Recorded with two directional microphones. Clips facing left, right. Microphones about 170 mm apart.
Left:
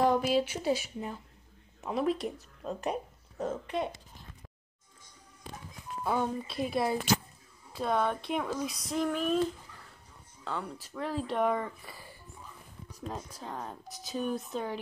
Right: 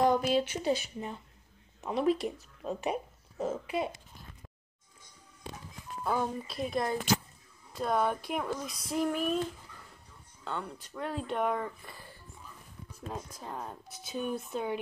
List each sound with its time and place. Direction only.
0.0 s speech: centre (ahead or behind)
6.0 s speech: centre (ahead or behind)
10.4 s speech: centre (ahead or behind)
13.4 s speech: 5° right (ahead or behind)